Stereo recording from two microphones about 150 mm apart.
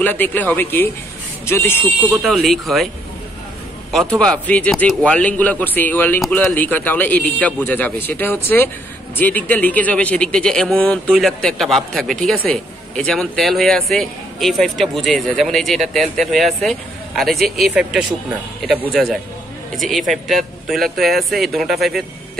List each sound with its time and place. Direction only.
0.0 s speech: 10° left (ahead or behind)
2.0 s a man's voice: centre (ahead or behind)
3.9 s a man's voice: 5° left (ahead or behind)
18.8 s a man's voice: 5° right (ahead or behind)